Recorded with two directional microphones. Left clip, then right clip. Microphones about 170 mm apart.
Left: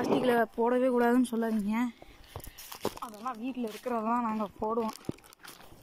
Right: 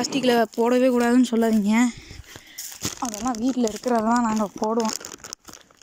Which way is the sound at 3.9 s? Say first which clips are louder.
Right 8 dB; 25° right (ahead or behind).